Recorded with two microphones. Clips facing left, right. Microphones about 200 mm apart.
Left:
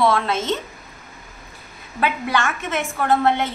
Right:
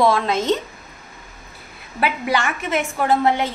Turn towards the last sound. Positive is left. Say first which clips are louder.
# right 1 dB
turn(degrees=-10)  # may be behind; listen again after turning